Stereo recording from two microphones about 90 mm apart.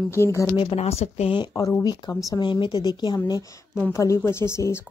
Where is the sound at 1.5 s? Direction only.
40° left (ahead or behind).